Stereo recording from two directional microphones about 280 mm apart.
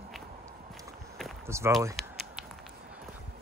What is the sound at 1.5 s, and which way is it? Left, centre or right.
Speech, centre.